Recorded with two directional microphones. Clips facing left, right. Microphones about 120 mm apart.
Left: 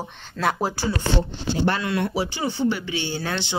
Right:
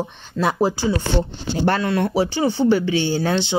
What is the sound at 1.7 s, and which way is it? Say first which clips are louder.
Speech: right 7 dB; 35° right (ahead or behind).